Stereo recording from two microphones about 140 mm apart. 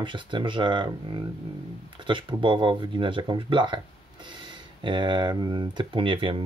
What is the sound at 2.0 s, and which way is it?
Speech, 35° right (ahead or behind).